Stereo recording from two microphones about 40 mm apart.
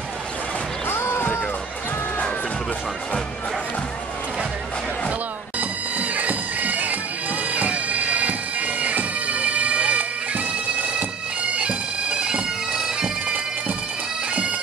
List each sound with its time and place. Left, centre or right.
0.8 s a sound: left
5.6 s bagpipes: right
11.5 s bagpipes: right